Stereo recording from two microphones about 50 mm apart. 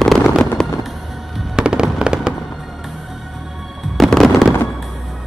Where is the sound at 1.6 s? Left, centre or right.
Centre.